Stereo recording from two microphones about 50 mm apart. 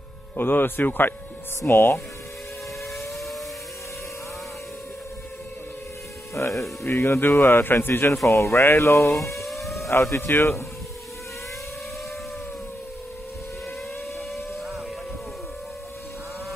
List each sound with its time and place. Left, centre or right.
0.4 s speech: left
6.3 s speech: left
6.9 s speech: left
8.3 s speech: left
9.4 s a sound: centre
10.1 s speech: left